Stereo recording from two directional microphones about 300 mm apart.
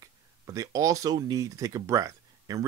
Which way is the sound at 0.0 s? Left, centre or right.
Centre.